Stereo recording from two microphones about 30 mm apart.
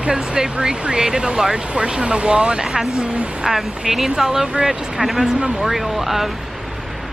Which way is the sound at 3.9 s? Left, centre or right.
Right.